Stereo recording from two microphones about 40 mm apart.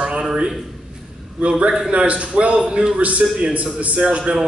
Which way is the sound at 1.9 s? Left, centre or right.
Right.